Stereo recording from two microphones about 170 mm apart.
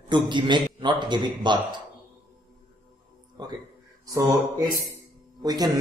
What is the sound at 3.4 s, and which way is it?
Speech, 25° right (ahead or behind).